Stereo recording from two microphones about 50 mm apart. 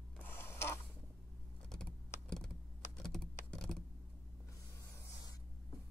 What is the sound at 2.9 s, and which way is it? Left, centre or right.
Computer keyboard, centre.